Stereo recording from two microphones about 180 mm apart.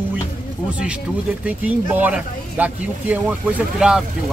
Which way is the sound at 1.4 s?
10° right (ahead or behind).